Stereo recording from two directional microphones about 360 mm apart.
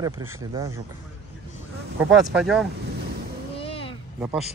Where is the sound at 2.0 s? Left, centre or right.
Centre.